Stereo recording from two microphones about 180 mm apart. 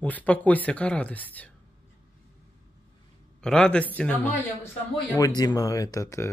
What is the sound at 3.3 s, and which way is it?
Speech, 5° left (ahead or behind).